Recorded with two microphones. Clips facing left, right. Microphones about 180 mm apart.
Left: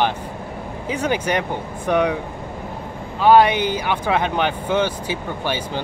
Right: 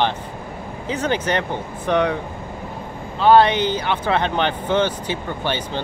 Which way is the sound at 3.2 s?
10° left (ahead or behind).